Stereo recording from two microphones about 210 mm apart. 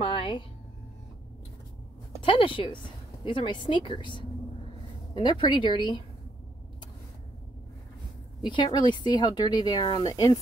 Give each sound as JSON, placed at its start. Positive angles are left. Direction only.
{"t": 0.0, "sound": "speech", "side_deg": 25}
{"t": 2.2, "sound": "speech", "side_deg": 25}
{"t": 8.4, "sound": "speech", "side_deg": 20}